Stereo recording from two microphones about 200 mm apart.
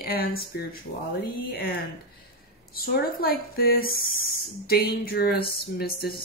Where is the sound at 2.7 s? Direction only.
50° left (ahead or behind).